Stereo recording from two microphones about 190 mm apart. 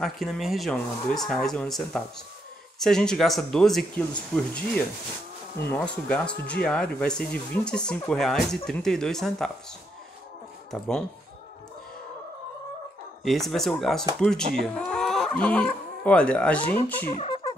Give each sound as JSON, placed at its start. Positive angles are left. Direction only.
{"t": 0.0, "sound": "speech", "side_deg": 0}
{"t": 5.7, "sound": "speech", "side_deg": 5}
{"t": 10.7, "sound": "speech", "side_deg": 5}
{"t": 13.2, "sound": "speech", "side_deg": 0}
{"t": 17.1, "sound": "music", "side_deg": 30}